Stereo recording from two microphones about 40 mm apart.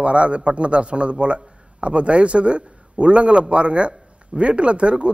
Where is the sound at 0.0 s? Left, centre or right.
Right.